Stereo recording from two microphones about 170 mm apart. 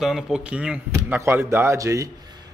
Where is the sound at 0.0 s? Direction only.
Centre (ahead or behind).